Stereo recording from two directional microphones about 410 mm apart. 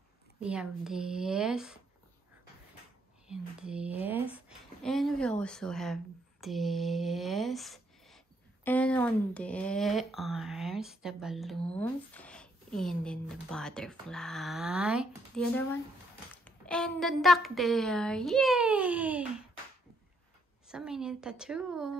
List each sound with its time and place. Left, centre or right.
0.4 s speech: centre
3.3 s speech: centre
20.6 s speech: centre